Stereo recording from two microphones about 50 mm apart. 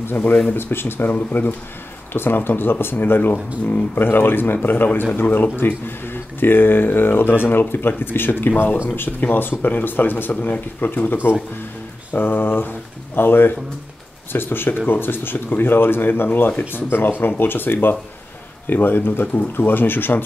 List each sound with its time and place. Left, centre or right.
0.1 s speech: left